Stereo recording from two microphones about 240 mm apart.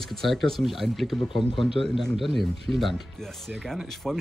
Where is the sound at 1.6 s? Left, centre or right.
Left.